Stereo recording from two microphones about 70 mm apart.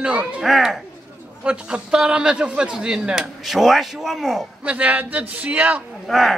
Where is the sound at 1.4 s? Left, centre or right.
Centre.